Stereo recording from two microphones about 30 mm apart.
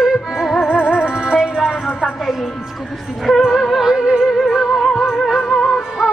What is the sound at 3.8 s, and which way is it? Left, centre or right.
Music, right.